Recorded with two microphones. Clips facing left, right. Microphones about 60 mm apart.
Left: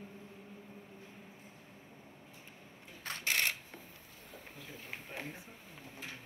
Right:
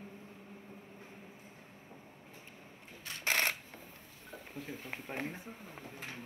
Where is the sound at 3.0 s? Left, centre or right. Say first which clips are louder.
Left 4 dB; left.